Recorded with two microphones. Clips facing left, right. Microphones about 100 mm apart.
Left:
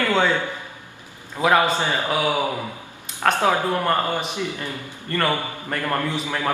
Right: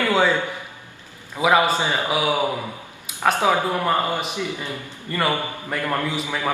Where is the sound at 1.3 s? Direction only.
10° right (ahead or behind).